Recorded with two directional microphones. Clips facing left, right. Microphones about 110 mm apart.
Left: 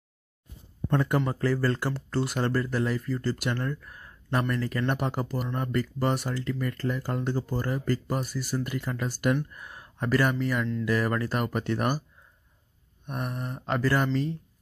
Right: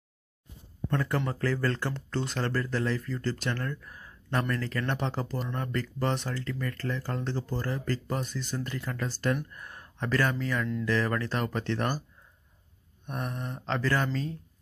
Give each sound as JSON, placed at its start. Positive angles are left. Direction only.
{"t": 0.8, "sound": "speech", "side_deg": 20}
{"t": 3.8, "sound": "a sound", "side_deg": 0}
{"t": 4.3, "sound": "speech", "side_deg": 10}
{"t": 9.5, "sound": "speech", "side_deg": 5}
{"t": 13.0, "sound": "speech", "side_deg": 5}